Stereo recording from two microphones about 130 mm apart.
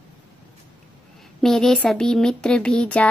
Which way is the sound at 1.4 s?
5° left (ahead or behind).